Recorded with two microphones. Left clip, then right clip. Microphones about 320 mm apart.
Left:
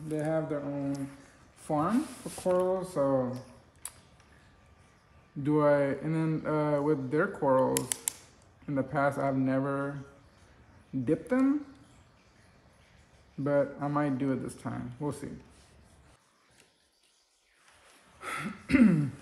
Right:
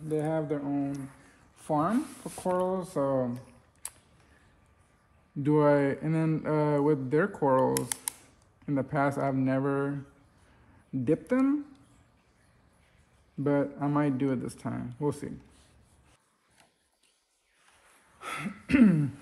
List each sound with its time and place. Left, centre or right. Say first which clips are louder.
0.1 s speech: right 1 dB; centre
1.6 s a sound: right 2 dB; centre
1.9 s speech: even; centre
2.5 s speech: left 1 dB; centre
5.4 s speech: right 1 dB; right
7.7 s speech: even; centre
8.6 s speech: even; right
11.1 s speech: right 1 dB; right
13.4 s speech: even; right
18.2 s speech: even; centre